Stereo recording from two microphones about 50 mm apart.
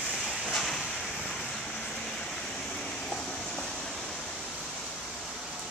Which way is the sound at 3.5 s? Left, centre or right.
Centre.